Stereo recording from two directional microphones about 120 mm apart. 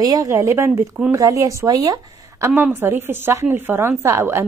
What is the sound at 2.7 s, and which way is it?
A woman's voice, 20° right (ahead or behind).